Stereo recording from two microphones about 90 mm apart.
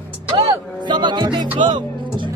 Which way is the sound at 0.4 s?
70° right (ahead or behind).